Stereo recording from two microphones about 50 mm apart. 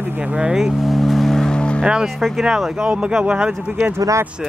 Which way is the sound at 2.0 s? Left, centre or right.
Centre.